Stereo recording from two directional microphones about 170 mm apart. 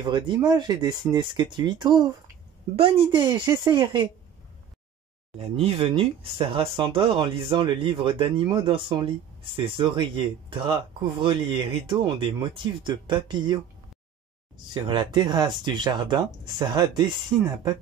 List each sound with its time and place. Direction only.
0.0 s speech: 25° right (ahead or behind)
5.4 s speech: 35° right (ahead or behind)
14.7 s speech: 25° right (ahead or behind)
17.3 s speech: 15° right (ahead or behind)